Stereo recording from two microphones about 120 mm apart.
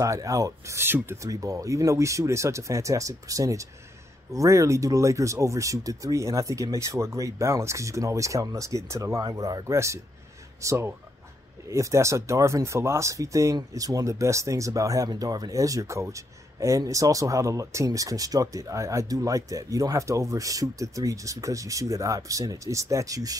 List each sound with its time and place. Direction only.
0.0 s speech: 25° right (ahead or behind)